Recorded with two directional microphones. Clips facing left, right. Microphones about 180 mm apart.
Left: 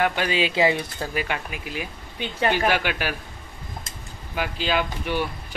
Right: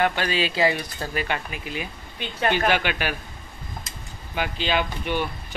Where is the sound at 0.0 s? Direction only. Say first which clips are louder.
Even; 10° left (ahead or behind).